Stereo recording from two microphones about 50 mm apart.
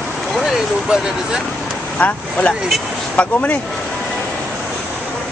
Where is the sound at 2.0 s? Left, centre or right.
Left.